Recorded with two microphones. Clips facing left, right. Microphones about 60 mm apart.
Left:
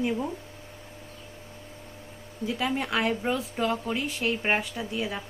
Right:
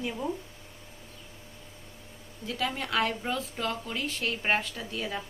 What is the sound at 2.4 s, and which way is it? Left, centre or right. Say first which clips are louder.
Speech: left 4 dB; centre.